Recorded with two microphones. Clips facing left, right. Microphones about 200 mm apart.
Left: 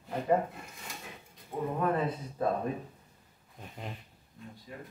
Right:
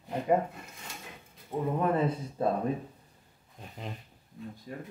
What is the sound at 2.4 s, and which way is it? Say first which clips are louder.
Speech: right 1 dB; 25° right (ahead or behind).